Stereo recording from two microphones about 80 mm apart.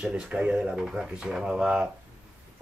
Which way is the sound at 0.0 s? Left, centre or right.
Centre.